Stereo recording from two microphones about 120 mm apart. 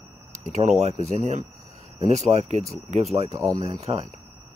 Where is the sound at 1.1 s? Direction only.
70° right (ahead or behind).